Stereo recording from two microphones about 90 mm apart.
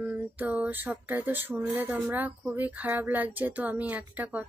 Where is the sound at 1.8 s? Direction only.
20° right (ahead or behind).